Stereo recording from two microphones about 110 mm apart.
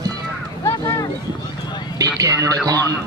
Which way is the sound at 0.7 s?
35° left (ahead or behind).